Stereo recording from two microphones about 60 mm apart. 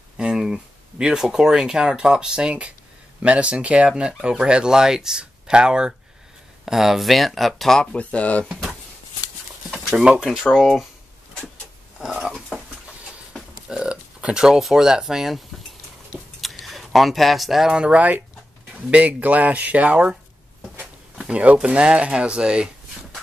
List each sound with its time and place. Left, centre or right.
0.2 s speech: centre
7.8 s speech: centre
9.7 s a sound: centre
10.2 s speech: centre
12.0 s stir: centre
13.7 s speech: centre
16.3 s keys jangling: centre
17.7 s speech: right
21.3 s speech: right